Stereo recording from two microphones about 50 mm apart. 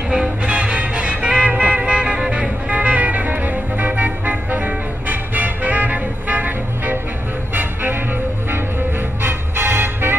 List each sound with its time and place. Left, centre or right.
0.1 s music: right
9.2 s music: right